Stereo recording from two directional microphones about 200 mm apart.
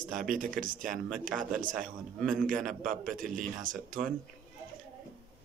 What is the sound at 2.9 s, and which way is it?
Speech, 40° right (ahead or behind).